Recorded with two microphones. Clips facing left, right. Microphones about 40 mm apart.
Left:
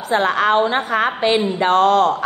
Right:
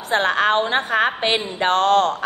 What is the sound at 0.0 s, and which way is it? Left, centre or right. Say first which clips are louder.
A woman's voice: left 2 dB; right.